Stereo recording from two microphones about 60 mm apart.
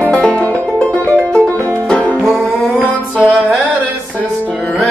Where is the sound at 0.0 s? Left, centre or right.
Left.